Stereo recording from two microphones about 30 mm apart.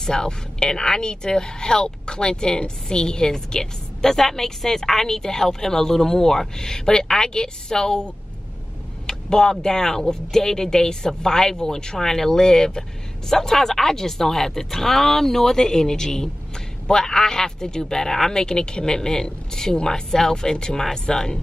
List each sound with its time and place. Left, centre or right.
0.0 s speech: left
9.0 s speech: centre